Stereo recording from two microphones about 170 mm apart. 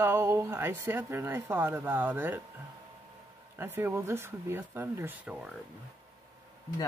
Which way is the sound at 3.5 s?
15° right (ahead or behind).